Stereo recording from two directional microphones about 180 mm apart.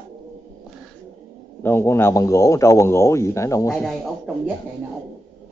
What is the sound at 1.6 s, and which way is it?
Speech, 15° left (ahead or behind).